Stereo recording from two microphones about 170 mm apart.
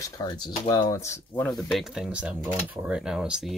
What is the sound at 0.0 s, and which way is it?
Speech, 20° left (ahead or behind).